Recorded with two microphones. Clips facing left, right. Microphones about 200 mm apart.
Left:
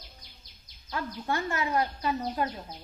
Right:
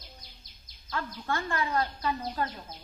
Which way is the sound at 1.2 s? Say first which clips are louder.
Left 1 dB; 20° left (ahead or behind).